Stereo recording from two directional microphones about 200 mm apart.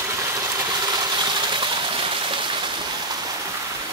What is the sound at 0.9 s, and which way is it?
Rain, 20° right (ahead or behind).